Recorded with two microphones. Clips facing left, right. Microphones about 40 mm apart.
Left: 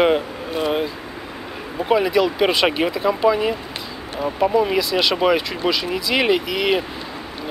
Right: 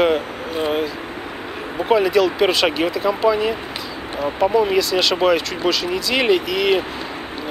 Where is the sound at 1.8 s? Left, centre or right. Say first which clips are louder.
Right 2 dB; centre.